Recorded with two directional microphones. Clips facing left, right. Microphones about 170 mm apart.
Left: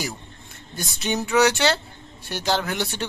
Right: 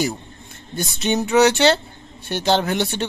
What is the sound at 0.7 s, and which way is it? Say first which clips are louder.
Speech: right 5 dB; 25° right (ahead or behind).